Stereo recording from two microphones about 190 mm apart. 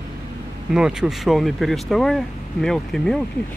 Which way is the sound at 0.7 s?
5° right (ahead or behind).